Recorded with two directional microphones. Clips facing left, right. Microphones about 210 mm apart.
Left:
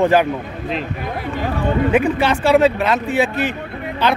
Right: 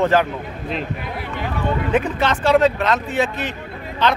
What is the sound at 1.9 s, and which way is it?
Speech, 10° left (ahead or behind).